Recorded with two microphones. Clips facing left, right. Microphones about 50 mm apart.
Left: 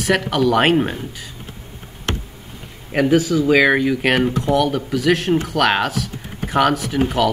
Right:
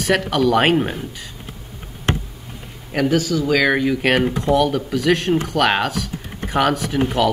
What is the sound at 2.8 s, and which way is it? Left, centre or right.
Speech, centre.